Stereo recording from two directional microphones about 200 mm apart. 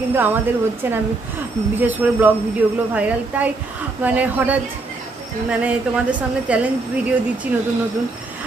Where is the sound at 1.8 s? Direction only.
10° right (ahead or behind).